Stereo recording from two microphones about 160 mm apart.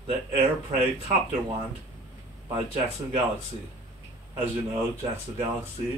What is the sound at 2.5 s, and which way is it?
Speech, 40° right (ahead or behind).